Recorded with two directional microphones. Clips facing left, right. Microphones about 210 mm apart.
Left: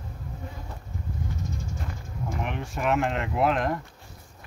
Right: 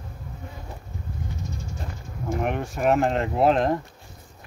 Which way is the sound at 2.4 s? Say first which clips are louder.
Right 6 dB; 45° right (ahead or behind).